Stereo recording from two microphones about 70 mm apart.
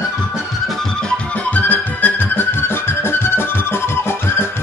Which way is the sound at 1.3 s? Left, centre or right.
Left.